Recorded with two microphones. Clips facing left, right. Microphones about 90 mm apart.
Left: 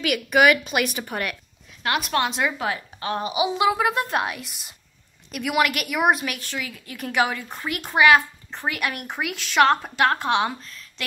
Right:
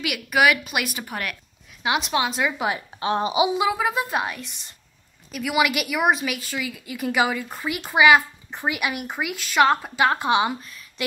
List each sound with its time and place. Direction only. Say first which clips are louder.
0.0 s a woman's voice: left 2 dB; 5° right (ahead or behind)
1.8 s speech: right 1 dB; 15° right (ahead or behind)
2.1 s a woman's voice: left 2 dB; centre (ahead or behind)
2.6 s a woman's voice: right 2 dB; 20° right (ahead or behind)
3.5 s a woman's voice: left 1 dB; centre (ahead or behind)